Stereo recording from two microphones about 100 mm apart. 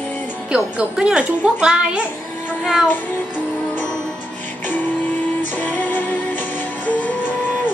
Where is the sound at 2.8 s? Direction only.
20° left (ahead or behind).